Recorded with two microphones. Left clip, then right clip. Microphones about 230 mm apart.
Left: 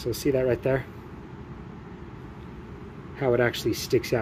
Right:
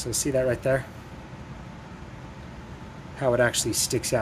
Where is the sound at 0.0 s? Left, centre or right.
Centre.